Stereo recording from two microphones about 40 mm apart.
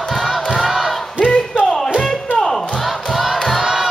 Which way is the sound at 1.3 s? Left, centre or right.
Centre.